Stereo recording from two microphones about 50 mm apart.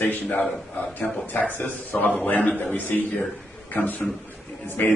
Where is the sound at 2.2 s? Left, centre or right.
Left.